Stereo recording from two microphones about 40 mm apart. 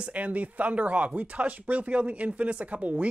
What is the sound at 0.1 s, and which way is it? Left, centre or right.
Speech, right.